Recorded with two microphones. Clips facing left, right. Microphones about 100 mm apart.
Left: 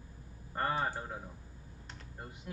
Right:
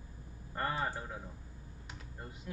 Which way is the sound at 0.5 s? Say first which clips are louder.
Left 2 dB; 30° left (ahead or behind).